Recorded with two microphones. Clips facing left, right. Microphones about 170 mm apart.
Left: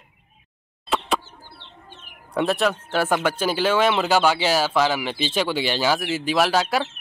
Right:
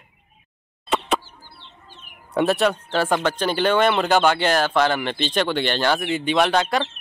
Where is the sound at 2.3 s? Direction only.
Centre (ahead or behind).